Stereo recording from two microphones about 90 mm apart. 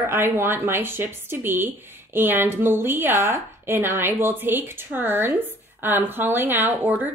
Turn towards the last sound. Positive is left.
turn(degrees=-20)  # may be behind; listen again after turning